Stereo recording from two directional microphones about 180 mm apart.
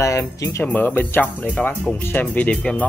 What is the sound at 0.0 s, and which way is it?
Speech, 15° left (ahead or behind).